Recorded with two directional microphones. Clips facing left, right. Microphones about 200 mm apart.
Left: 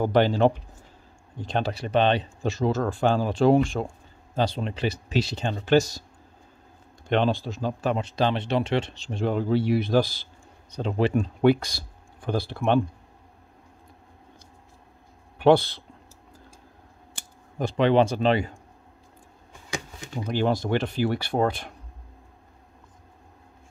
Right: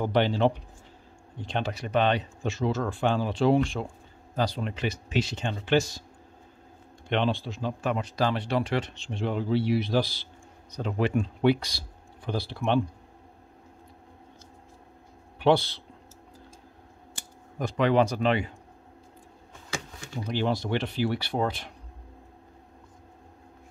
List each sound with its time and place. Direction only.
0.0 s speech: 45° left (ahead or behind)
4.4 s speech: 25° left (ahead or behind)
7.1 s speech: 40° left (ahead or behind)
10.7 s speech: 25° left (ahead or behind); by 12.8 s 50° left (ahead or behind)
15.3 s speech: 50° left (ahead or behind)
17.6 s speech: 30° left (ahead or behind)
19.7 s a sound: 15° left (ahead or behind)
20.2 s speech: 45° left (ahead or behind)